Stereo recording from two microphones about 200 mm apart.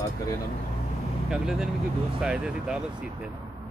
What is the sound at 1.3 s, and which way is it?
Speech, 5° right (ahead or behind).